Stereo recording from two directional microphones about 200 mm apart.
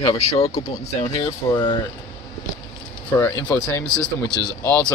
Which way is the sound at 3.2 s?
15° left (ahead or behind).